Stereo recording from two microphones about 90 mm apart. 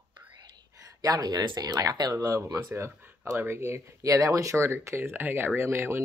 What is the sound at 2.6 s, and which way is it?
Speech, 25° right (ahead or behind).